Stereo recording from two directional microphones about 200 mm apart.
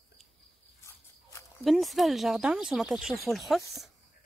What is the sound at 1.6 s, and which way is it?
Speech, centre (ahead or behind).